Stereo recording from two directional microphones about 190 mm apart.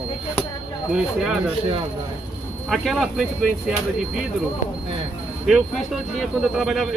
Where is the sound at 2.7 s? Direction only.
Centre (ahead or behind).